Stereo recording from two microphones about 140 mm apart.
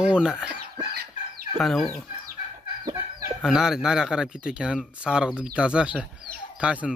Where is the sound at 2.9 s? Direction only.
25° right (ahead or behind).